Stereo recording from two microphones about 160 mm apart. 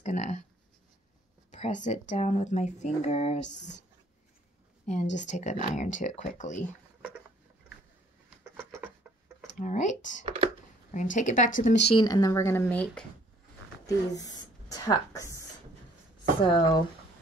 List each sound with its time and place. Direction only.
0.0 s speech: 45° left (ahead or behind)
1.5 s speech: 50° left (ahead or behind)
5.1 s speech: 50° left (ahead or behind)
8.5 s a sound: 15° right (ahead or behind)
9.6 s speech: 50° left (ahead or behind)
10.2 s speech: 35° right (ahead or behind)
10.9 s speech: 50° left (ahead or behind)
11.8 s speech: 30° left (ahead or behind); by 12.8 s 15° left (ahead or behind)
13.8 s a woman's voice: 20° left (ahead or behind)
16.4 s speech: 30° left (ahead or behind)